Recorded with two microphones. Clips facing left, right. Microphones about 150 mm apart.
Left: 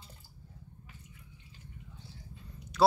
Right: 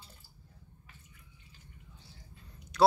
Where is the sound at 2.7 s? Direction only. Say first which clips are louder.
Right 1 dB; centre (ahead or behind).